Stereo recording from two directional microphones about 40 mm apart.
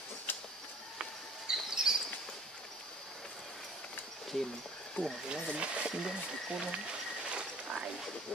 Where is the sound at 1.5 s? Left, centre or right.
Centre.